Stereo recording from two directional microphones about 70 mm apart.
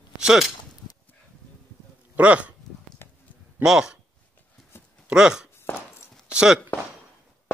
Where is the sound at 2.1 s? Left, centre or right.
Centre.